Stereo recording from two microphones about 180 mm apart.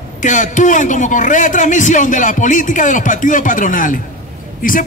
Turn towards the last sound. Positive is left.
turn(degrees=50)  # may be behind; listen again after turning